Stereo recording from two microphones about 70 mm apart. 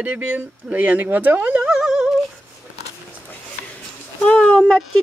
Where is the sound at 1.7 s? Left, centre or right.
Centre.